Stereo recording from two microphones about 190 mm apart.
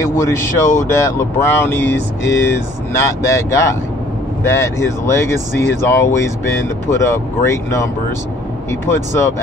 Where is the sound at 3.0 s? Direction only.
15° left (ahead or behind).